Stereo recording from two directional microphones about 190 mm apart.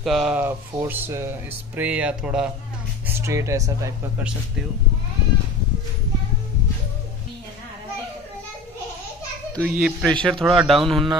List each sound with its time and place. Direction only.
0.0 s speech: centre (ahead or behind); by 3.9 s 15° right (ahead or behind)
9.6 s speech: centre (ahead or behind)